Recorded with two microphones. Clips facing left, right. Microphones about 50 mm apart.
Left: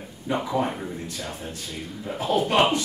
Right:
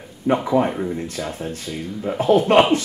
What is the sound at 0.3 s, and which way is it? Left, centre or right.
Speech, right.